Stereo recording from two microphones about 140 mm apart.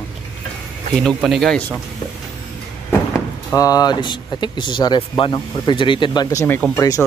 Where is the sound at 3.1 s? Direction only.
25° left (ahead or behind).